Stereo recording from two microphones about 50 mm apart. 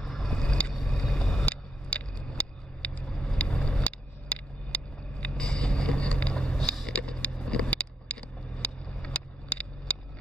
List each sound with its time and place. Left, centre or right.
0.0 s vehicle: centre
0.3 s vehicle: centre
3.1 s vehicle: centre
4.3 s a sound: left
5.4 s vehicle: centre